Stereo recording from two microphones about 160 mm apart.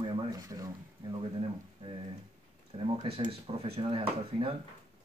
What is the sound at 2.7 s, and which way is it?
Speech, 40° right (ahead or behind).